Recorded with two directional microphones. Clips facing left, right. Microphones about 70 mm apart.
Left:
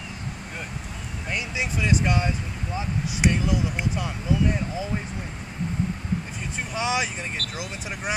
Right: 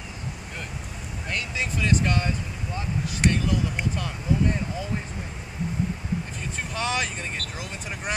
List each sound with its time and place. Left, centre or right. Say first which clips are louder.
1.3 s speech: left 1 dB; centre
6.7 s speech: left 2 dB; centre
7.4 s speech: left 2 dB; left